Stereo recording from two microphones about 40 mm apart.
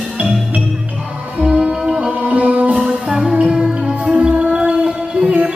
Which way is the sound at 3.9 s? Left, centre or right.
Right.